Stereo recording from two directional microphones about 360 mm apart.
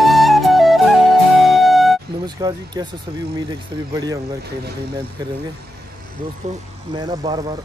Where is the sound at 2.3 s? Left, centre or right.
Centre.